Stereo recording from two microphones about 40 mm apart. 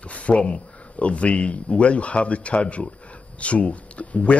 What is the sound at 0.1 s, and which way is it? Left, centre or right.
Speech, left.